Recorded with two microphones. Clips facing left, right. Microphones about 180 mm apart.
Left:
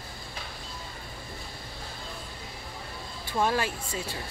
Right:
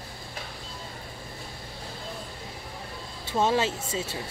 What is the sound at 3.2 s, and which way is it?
Speech, 20° right (ahead or behind).